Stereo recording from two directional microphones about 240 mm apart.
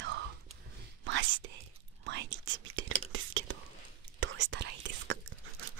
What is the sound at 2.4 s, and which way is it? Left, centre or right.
Whispering, right.